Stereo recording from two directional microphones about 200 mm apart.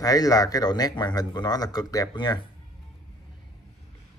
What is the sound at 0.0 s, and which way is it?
Speech, 15° left (ahead or behind).